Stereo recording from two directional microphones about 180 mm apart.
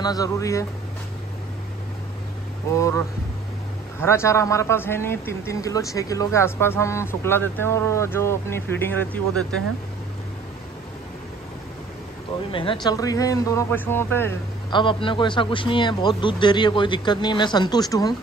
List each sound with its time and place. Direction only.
0.0 s a man's voice: 20° left (ahead or behind)
2.7 s a man's voice: 15° left (ahead or behind)
12.4 s a man's voice: 30° left (ahead or behind); by 14.3 s 10° left (ahead or behind)
14.7 s a man's voice: 25° left (ahead or behind)